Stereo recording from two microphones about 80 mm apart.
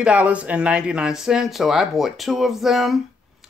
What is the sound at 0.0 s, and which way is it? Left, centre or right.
Speech, centre.